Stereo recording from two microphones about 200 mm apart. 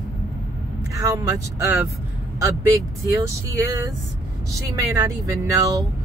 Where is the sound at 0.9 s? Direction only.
15° right (ahead or behind).